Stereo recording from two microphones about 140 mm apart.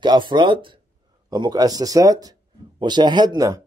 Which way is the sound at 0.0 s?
30° right (ahead or behind).